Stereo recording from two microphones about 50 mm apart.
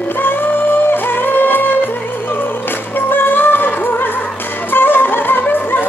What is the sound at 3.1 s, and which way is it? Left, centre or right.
Music, left.